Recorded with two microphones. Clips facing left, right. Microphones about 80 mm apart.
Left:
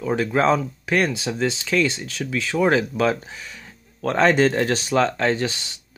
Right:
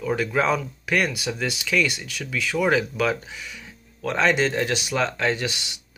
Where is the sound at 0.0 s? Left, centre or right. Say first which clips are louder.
Left 3 dB; left.